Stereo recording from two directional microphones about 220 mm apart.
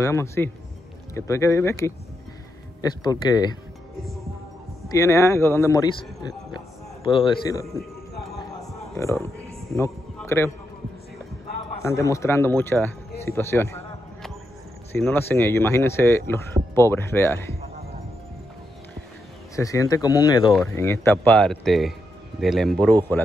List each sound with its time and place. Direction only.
0.0 s speech: 10° left (ahead or behind)
4.8 s speech: 15° left (ahead or behind)
8.9 s speech: 10° left (ahead or behind)
11.8 s speech: 15° left (ahead or behind)
14.9 s speech: 5° left (ahead or behind)
19.5 s speech: 15° left (ahead or behind)